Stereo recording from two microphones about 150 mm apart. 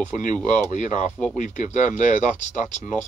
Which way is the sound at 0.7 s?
55° left (ahead or behind).